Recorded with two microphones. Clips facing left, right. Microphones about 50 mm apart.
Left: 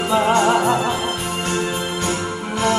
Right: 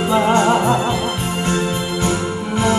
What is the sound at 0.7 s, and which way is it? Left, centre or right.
Music, right.